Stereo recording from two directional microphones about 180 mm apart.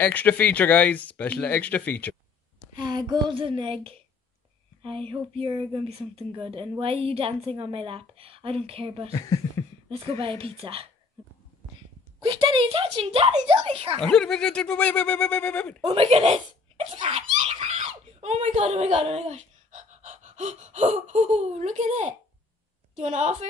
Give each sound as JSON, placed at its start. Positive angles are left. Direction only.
{"t": 0.0, "sound": "speech", "side_deg": 10}
{"t": 2.7, "sound": "speech", "side_deg": -25}
{"t": 4.8, "sound": "a sound", "side_deg": -30}
{"t": 6.1, "sound": "a woman's voice", "side_deg": -30}
{"t": 9.1, "sound": "speech", "side_deg": 20}
{"t": 9.8, "sound": "a woman's voice", "side_deg": -30}
{"t": 12.2, "sound": "a woman's voice", "side_deg": -30}
{"t": 13.5, "sound": "a sound", "side_deg": -30}
{"t": 14.0, "sound": "speech", "side_deg": 5}
{"t": 15.8, "sound": "a child's voice", "side_deg": -35}